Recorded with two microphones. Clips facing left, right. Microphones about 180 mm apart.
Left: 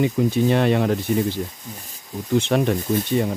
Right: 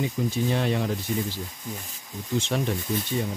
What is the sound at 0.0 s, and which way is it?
Speech, 65° left (ahead or behind).